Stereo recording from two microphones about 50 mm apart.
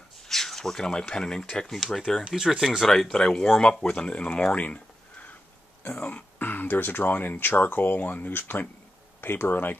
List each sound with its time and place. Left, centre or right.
0.3 s speech: centre
2.3 s speech: centre
2.9 s speech: centre; by 9.8 s left